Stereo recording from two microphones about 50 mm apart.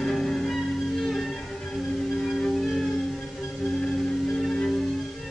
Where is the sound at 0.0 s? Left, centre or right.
Centre.